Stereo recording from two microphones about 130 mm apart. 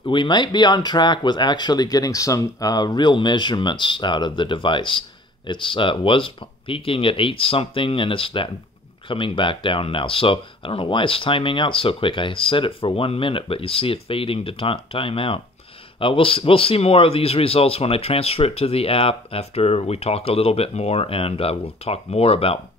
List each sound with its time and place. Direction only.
0.0 s a man's voice: 40° left (ahead or behind)